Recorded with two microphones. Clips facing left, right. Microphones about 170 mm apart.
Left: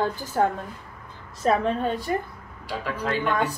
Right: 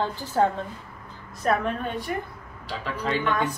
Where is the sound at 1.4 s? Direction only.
30° left (ahead or behind).